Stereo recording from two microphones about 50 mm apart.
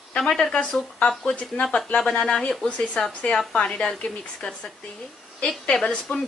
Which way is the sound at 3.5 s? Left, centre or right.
Left.